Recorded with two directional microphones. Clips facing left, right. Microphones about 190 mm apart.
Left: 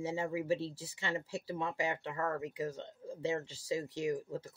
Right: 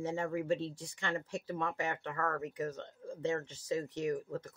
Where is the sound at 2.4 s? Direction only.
10° left (ahead or behind).